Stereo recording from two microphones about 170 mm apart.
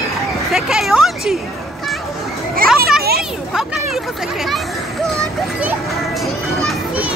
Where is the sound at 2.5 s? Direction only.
60° right (ahead or behind).